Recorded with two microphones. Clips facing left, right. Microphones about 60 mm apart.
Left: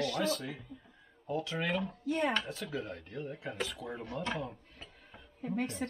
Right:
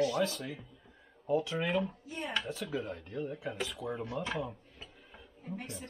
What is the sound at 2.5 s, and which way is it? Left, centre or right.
Speech, centre.